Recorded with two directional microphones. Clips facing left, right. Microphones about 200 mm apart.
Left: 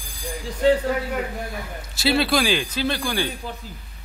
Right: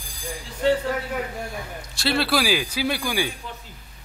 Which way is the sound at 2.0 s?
Centre (ahead or behind).